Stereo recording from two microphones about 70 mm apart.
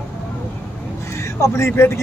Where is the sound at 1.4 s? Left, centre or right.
Left.